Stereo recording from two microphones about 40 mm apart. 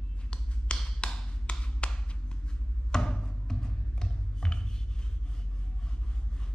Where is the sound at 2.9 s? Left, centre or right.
Centre.